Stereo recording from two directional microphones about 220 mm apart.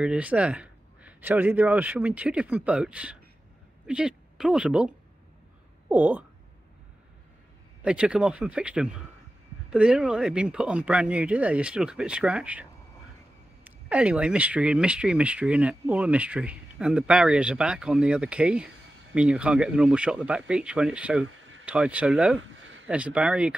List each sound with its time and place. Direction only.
0.0 s speech: 5° right (ahead or behind)
7.8 s speech: 5° right (ahead or behind)
13.7 s speech: 5° right (ahead or behind)
21.3 s a sound: 65° right (ahead or behind)
21.6 s speech: 5° right (ahead or behind)